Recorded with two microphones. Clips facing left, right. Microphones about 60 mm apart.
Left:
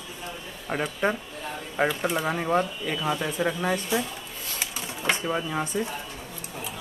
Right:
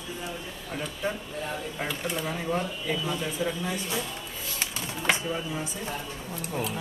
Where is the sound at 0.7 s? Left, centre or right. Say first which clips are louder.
Left 6 dB; left.